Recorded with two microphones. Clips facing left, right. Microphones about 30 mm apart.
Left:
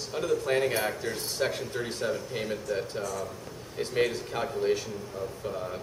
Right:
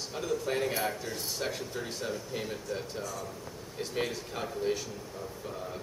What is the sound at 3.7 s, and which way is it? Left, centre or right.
Speech, centre.